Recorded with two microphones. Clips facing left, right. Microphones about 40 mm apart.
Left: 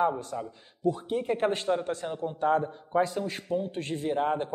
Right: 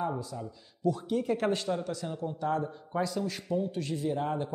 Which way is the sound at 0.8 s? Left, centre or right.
Left.